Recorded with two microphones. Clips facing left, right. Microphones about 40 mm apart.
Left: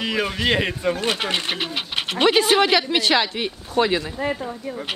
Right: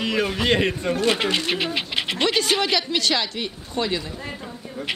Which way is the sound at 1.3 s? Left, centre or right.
Left.